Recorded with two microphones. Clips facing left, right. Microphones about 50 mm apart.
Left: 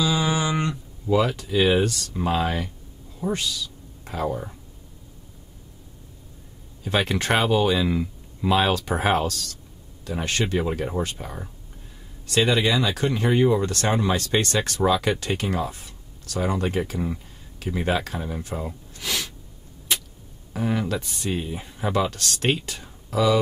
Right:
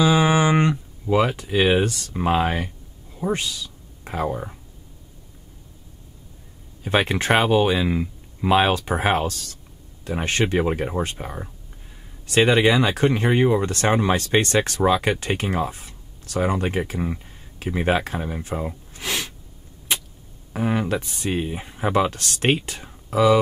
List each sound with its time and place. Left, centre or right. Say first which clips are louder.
0.0 s a sound: right 6 dB; right
1.0 s speech: right 1 dB; right
6.8 s speech: right 3 dB; right
20.5 s speech: right 2 dB; right